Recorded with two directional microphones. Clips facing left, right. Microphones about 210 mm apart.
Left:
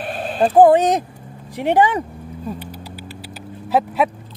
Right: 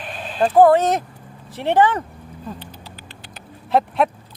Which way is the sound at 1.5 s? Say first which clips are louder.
Left 1 dB; 15° left (ahead or behind).